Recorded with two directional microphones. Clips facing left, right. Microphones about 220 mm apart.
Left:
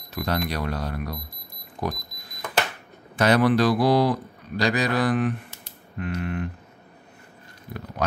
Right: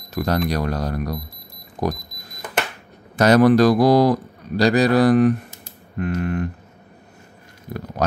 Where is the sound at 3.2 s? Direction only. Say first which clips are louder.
Right 6 dB; 40° right (ahead or behind).